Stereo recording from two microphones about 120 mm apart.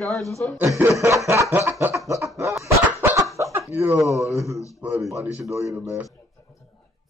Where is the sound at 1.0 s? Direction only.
25° right (ahead or behind).